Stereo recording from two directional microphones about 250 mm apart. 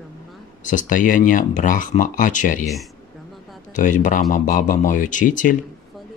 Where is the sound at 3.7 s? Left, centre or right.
Left.